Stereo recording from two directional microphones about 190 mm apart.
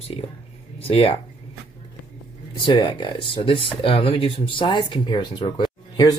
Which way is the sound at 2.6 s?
25° left (ahead or behind).